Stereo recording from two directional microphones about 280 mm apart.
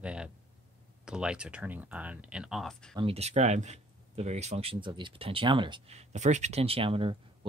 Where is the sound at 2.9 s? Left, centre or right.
Centre.